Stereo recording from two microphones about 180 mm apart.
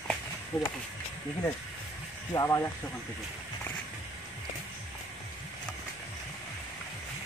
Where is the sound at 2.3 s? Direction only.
20° left (ahead or behind).